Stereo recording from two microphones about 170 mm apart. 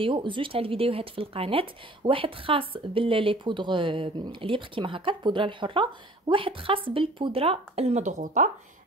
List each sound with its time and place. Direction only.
0.0 s speech: 30° right (ahead or behind); by 8.5 s 45° right (ahead or behind)